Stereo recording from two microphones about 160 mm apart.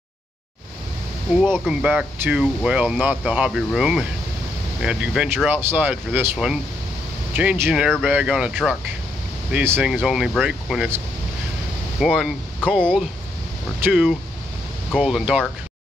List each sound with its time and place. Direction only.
1.3 s speech: centre (ahead or behind)
12.0 s speech: 5° right (ahead or behind)
13.8 s speech: 5° right (ahead or behind)